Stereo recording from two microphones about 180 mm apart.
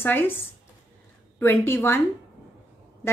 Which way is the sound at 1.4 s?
10° left (ahead or behind).